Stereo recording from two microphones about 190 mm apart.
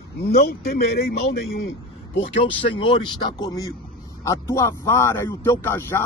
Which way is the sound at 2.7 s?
25° left (ahead or behind).